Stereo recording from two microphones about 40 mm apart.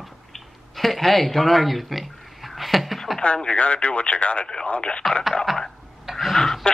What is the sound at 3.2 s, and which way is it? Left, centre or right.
Speech, left.